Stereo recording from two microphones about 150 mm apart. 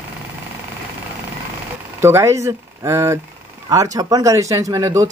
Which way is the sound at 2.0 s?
15° right (ahead or behind).